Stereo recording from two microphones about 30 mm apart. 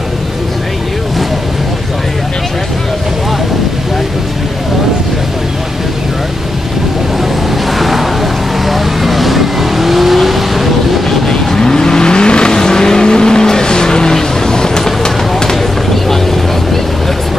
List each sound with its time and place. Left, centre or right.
8.6 s vehicle: centre
11.2 s vehicle: centre
12.5 s vehicle: left